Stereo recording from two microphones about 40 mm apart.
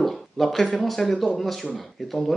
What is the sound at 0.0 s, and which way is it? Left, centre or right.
Speech, centre.